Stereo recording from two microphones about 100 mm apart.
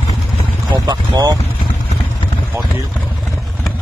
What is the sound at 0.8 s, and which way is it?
Speech, 40° right (ahead or behind).